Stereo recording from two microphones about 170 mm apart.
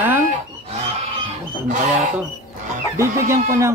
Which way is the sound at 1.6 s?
45° right (ahead or behind).